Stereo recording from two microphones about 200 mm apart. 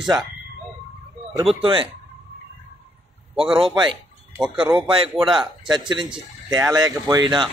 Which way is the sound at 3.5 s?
25° right (ahead or behind).